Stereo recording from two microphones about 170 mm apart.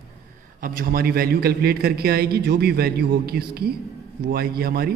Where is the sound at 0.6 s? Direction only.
55° right (ahead or behind).